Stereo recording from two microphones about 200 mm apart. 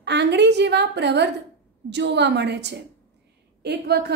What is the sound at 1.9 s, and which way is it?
A woman's voice, 60° right (ahead or behind).